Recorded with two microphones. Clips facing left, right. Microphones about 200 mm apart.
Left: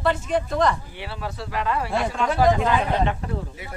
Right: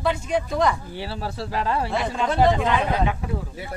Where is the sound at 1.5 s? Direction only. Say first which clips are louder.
Right 1 dB; 30° right (ahead or behind).